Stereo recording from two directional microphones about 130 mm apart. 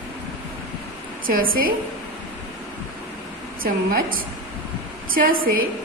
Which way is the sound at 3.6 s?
90° right.